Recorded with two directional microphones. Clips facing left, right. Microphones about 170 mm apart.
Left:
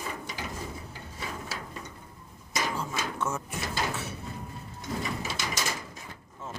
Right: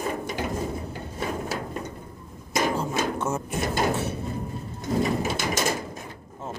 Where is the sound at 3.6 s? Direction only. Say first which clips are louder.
Right 8 dB; 50° right (ahead or behind).